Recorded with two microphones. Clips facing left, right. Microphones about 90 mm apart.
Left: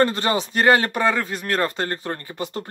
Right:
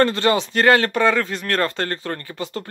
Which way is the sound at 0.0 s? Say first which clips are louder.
Right 2 dB; 20° left (ahead or behind).